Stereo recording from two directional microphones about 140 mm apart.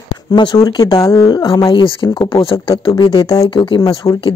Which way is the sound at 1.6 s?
35° left (ahead or behind).